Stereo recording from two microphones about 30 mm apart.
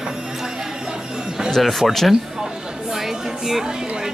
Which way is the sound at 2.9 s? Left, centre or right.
Centre.